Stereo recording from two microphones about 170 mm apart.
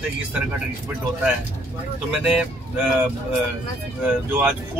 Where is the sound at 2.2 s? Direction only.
5° right (ahead or behind).